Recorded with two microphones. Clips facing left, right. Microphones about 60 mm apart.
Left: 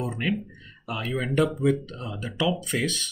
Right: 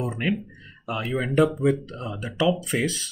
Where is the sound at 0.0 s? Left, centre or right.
Centre.